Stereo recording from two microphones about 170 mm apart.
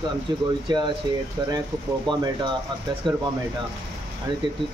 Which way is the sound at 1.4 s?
25° right (ahead or behind).